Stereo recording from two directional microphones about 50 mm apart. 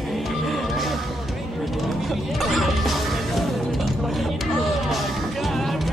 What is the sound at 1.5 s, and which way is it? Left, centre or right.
Music, centre.